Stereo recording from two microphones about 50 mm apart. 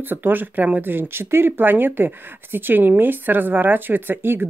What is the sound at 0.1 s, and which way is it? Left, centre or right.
Speech, right.